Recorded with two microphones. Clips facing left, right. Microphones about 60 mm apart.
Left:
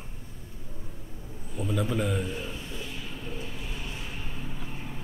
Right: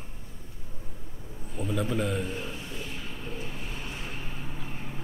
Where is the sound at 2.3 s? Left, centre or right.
Right.